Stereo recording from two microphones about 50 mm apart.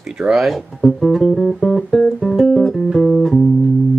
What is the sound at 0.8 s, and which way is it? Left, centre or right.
Music, centre.